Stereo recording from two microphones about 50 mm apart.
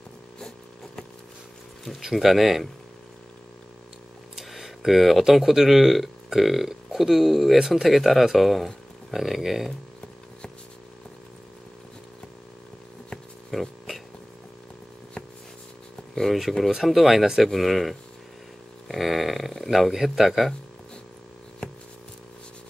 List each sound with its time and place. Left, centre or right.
1.9 s speech: centre
4.4 s speech: centre
13.5 s a sound: centre
16.2 s speech: centre